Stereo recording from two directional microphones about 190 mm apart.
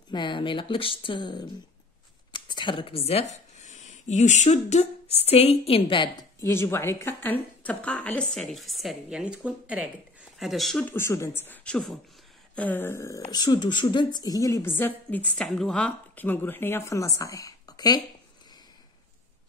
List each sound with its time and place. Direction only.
0.1 s speech: 25° left (ahead or behind)
6.4 s a woman's voice: 15° left (ahead or behind)